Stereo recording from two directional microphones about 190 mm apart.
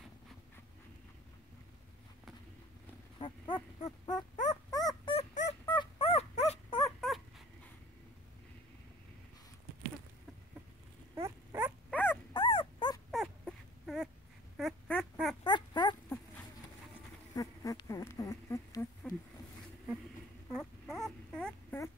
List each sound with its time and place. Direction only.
3.2 s dog: 25° left (ahead or behind)
5.1 s dog: 40° left (ahead or behind)
5.7 s dog: 25° left (ahead or behind)
7.0 s dog: centre (ahead or behind)
11.1 s dog: 10° right (ahead or behind)
11.9 s dog: 10° left (ahead or behind)
12.4 s dog: 25° left (ahead or behind)
13.1 s a sound: centre (ahead or behind)
15.4 s a sound: 25° left (ahead or behind)
17.4 s a sound: 20° left (ahead or behind)
20.5 s dog: centre (ahead or behind)